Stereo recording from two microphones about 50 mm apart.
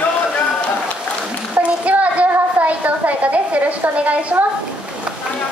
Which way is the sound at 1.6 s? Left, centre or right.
Right.